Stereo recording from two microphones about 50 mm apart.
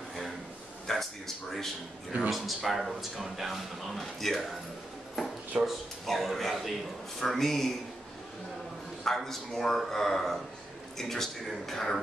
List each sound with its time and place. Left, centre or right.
0.8 s a man's voice: centre
5.6 s a man's voice: centre
9.0 s speech: centre